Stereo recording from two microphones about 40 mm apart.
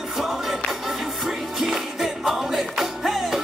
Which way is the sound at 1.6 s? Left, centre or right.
Centre.